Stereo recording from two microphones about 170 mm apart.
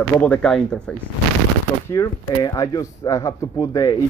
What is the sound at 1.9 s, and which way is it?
Speech, 20° left (ahead or behind).